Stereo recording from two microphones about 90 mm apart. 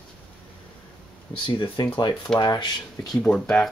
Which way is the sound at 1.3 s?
40° left (ahead or behind).